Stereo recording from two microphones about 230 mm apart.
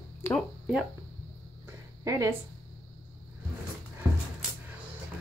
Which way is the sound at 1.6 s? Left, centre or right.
Centre.